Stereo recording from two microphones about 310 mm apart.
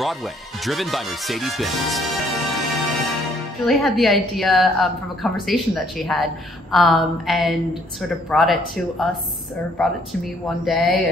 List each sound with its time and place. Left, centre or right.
0.0 s a woman's voice: centre